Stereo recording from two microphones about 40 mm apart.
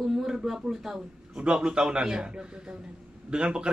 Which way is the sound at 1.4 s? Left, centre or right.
Right.